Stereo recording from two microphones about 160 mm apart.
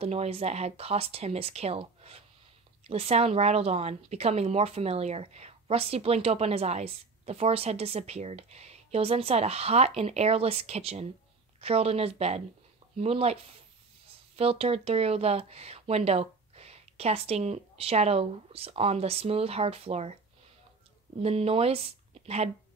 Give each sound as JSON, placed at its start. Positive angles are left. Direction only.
{"t": 0.0, "sound": "speech", "side_deg": -40}
{"t": 21.2, "sound": "speech", "side_deg": -40}